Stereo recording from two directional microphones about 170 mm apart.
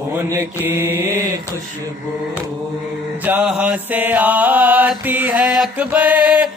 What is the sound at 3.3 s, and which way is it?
Mantra, 10° right (ahead or behind).